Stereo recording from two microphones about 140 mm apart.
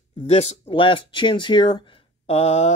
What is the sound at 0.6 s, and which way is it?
Speech, 40° left (ahead or behind).